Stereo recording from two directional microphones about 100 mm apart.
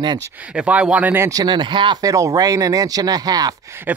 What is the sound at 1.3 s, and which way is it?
Speech, 45° right (ahead or behind).